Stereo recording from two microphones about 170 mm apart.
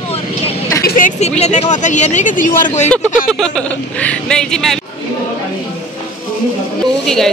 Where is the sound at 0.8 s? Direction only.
50° left (ahead or behind).